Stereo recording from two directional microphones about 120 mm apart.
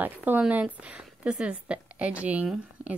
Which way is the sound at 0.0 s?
15° right (ahead or behind).